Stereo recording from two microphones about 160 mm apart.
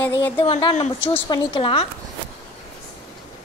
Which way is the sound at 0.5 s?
30° left (ahead or behind).